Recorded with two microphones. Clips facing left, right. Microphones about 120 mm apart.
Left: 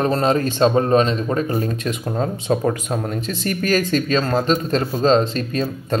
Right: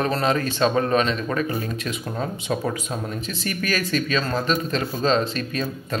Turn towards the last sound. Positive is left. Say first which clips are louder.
# left 5 dB
turn(degrees=35)  # may be behind; listen again after turning